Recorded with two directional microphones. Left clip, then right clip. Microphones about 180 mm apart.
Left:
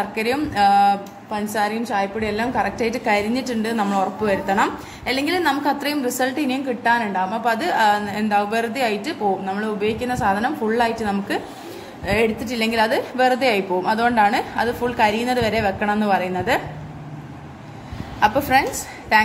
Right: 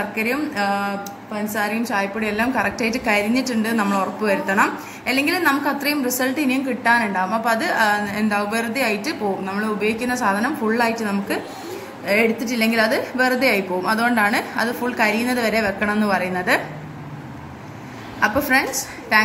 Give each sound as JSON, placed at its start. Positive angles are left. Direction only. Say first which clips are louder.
{"t": 0.1, "sound": "a woman's voice", "louder": "left 1 dB", "side_deg": 35}
{"t": 1.9, "sound": "a woman's voice", "louder": "even", "side_deg": 25}
{"t": 18.2, "sound": "a woman's voice", "louder": "left 1 dB", "side_deg": 25}